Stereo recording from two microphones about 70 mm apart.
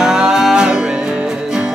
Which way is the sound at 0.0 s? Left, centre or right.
Centre.